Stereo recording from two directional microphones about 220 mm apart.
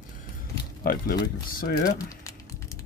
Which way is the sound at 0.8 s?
40° left (ahead or behind).